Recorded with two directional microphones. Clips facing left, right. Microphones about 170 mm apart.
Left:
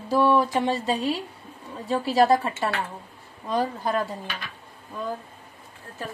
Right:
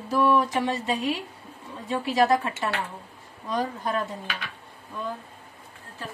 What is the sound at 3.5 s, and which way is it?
Speech, 30° left (ahead or behind).